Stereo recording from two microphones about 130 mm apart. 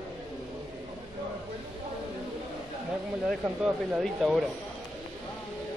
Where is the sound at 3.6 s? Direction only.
5° right (ahead or behind).